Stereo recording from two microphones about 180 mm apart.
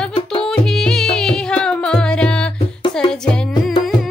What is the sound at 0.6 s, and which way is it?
Music, centre (ahead or behind).